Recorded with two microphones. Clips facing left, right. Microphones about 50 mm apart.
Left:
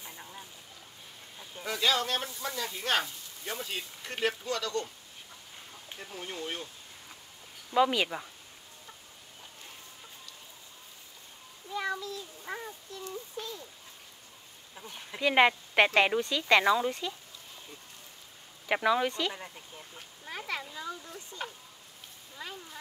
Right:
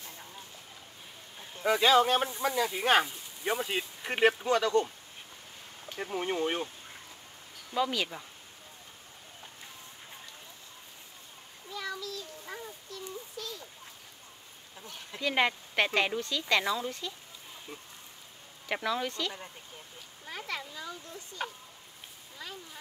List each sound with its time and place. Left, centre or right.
0.0 s duck: centre
1.6 s speech: right
5.9 s speech: right
7.7 s speech: centre
11.7 s child singing: left
13.4 s a sound: left
14.8 s speech: centre
18.7 s speech: centre